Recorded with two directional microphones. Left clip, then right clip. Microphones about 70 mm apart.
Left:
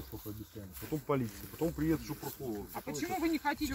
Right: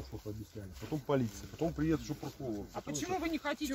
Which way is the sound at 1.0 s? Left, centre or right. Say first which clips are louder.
Right 2 dB; right.